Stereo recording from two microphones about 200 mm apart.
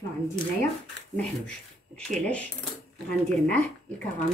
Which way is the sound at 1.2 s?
5° left (ahead or behind).